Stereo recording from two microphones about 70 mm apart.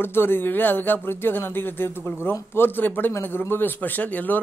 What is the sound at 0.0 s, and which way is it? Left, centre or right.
Speech, left.